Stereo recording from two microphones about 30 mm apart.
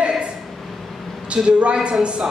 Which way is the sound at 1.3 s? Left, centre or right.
Right.